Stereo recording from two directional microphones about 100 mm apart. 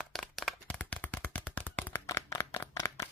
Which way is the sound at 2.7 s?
35° left (ahead or behind).